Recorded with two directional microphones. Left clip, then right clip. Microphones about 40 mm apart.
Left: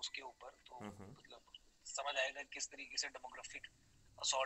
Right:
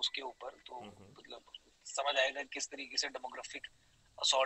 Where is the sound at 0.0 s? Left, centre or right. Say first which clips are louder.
Right 10 dB; right.